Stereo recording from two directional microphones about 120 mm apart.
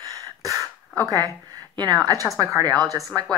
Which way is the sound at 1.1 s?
30° right (ahead or behind).